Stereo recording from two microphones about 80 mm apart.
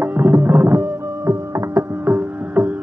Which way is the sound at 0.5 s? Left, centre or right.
Right.